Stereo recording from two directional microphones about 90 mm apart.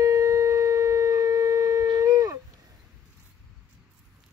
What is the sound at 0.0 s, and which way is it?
Shofar, 40° right (ahead or behind).